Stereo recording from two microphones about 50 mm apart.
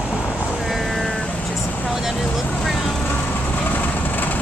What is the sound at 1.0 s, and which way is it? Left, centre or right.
Vehicle, centre.